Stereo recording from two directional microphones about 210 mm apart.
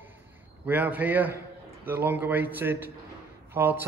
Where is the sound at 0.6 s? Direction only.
5° right (ahead or behind).